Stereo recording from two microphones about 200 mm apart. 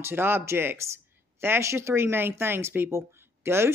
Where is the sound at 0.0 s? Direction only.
10° right (ahead or behind).